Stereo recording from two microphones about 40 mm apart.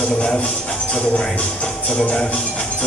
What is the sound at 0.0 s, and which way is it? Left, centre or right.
Speech, left.